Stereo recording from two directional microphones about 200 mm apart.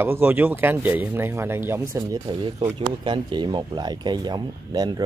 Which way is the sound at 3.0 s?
25° right (ahead or behind).